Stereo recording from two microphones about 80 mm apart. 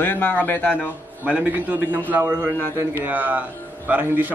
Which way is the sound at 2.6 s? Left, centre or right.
Right.